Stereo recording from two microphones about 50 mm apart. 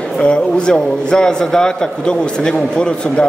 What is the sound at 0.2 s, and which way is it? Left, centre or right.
A man's voice, left.